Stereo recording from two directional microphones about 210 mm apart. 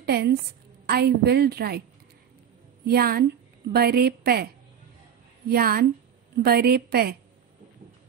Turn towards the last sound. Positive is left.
turn(degrees=-50)  # may be behind; listen again after turning